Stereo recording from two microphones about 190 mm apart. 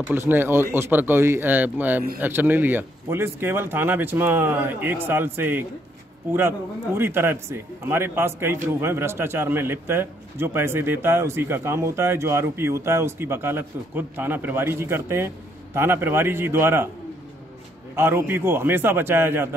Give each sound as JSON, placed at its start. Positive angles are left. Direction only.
{"t": 0.0, "sound": "speech", "side_deg": -10}
{"t": 17.9, "sound": "speech", "side_deg": -10}